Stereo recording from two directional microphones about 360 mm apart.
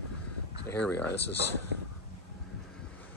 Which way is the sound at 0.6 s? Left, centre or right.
Centre.